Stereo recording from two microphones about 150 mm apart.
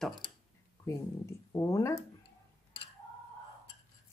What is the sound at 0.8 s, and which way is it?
Speech, 20° left (ahead or behind).